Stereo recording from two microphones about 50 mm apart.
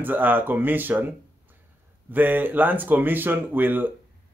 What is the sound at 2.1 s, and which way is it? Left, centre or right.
Speech, right.